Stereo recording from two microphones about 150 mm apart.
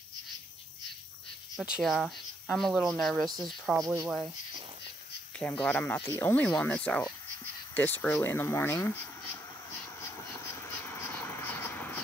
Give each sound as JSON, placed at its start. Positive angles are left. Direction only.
{"t": 1.6, "sound": "speech", "side_deg": 0}
{"t": 3.8, "sound": "speech", "side_deg": -20}
{"t": 5.4, "sound": "speech", "side_deg": 10}
{"t": 10.0, "sound": "a sound", "side_deg": 15}